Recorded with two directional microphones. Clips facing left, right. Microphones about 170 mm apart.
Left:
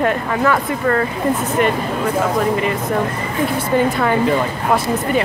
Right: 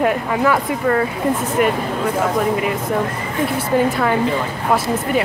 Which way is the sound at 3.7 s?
Centre (ahead or behind).